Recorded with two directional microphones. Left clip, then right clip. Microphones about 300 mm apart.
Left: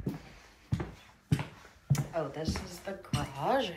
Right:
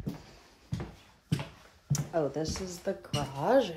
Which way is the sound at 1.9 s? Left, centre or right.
Right.